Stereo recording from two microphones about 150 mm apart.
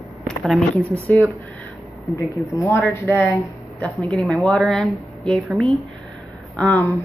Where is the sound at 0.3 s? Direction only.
5° left (ahead or behind).